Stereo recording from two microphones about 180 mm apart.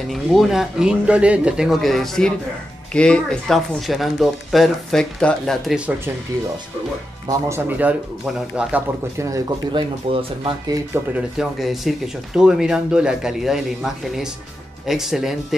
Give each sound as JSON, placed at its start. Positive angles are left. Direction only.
{"t": 0.1, "sound": "speech", "side_deg": 0}
{"t": 7.2, "sound": "speech", "side_deg": -15}
{"t": 10.1, "sound": "speech", "side_deg": -35}
{"t": 11.1, "sound": "speech", "side_deg": 0}